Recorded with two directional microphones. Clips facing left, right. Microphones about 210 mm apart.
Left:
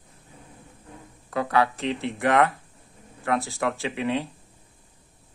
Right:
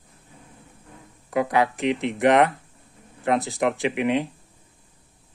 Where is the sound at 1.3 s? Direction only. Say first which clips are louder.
Right 2 dB; 15° right (ahead or behind).